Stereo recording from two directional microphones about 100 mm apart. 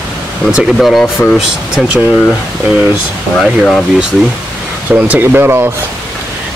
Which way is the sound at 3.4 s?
Centre (ahead or behind).